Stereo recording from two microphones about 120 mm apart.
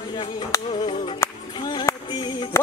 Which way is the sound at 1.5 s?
40° left (ahead or behind).